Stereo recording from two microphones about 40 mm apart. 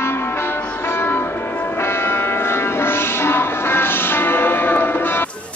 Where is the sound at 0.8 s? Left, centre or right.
Left.